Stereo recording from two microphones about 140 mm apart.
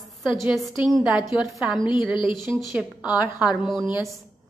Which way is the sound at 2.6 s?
5° right (ahead or behind).